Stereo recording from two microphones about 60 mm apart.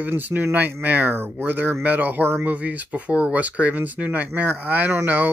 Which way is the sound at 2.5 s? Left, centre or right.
Right.